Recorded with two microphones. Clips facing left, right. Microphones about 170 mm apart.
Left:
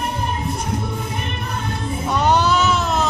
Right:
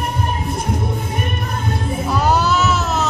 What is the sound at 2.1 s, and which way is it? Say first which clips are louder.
Baby cry: even; 5° right (ahead or behind).